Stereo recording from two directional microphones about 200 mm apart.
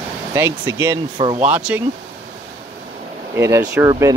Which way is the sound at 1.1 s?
25° right (ahead or behind).